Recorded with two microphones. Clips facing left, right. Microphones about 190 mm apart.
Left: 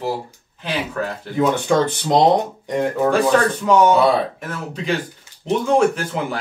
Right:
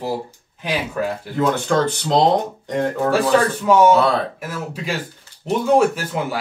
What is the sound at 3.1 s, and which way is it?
Speech, 5° right (ahead or behind).